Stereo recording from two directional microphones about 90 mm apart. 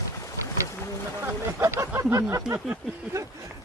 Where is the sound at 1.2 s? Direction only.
35° right (ahead or behind).